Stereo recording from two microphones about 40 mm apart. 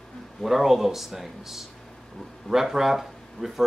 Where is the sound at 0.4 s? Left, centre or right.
Centre.